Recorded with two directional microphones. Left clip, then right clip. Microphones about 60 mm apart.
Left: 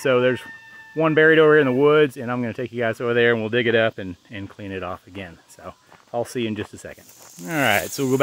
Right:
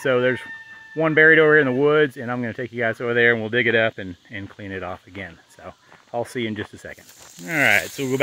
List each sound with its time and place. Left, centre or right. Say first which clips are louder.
0.0 s speech: left 1 dB; left
7.4 s speech: right 2 dB; left